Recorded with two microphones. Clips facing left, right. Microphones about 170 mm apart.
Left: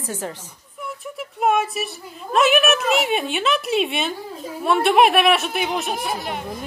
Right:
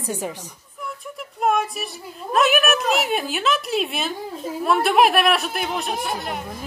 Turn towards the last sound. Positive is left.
turn(degrees=0)  # may be behind; listen again after turning